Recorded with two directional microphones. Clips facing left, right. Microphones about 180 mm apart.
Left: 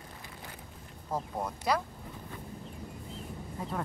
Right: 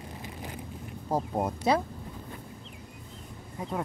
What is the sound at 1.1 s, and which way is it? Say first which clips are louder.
Speech: right 6 dB; 25° right (ahead or behind).